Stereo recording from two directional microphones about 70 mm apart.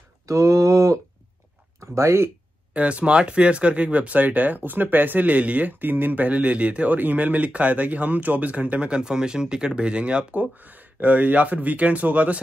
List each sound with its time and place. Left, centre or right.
0.3 s speech: right
2.7 s speech: centre